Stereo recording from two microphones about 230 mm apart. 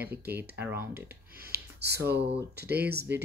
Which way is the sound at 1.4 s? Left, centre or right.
Right.